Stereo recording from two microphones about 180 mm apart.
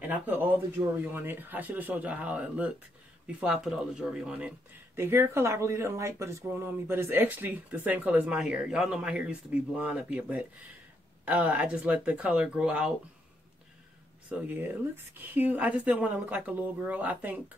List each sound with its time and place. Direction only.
0.1 s speech: 10° right (ahead or behind)
14.3 s speech: 10° right (ahead or behind)